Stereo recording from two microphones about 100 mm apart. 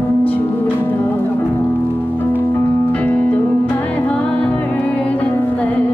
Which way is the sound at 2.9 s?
15° left (ahead or behind).